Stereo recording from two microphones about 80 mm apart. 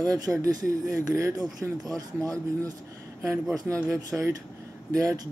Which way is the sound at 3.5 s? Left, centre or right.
Right.